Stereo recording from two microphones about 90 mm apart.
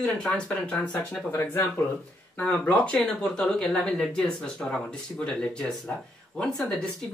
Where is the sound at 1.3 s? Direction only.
25° left (ahead or behind).